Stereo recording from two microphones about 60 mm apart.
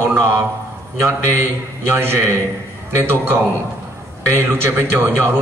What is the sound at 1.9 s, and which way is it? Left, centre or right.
Speech, right.